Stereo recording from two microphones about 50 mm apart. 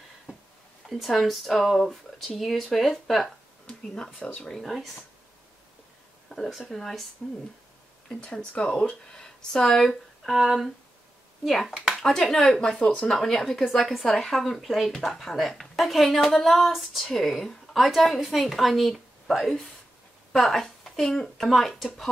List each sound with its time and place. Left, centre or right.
0.8 s speech: centre
6.2 s a sound: centre
6.7 s speech: centre
8.2 s speech: centre
12.7 s a woman's voice: centre